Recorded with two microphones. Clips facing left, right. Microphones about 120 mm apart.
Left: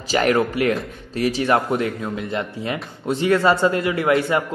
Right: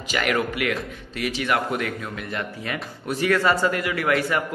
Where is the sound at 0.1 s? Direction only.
35° left (ahead or behind).